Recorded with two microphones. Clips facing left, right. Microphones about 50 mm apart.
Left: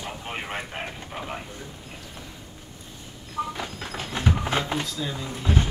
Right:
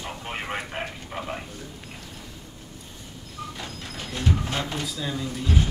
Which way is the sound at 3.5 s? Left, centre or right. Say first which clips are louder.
Left 3 dB; left.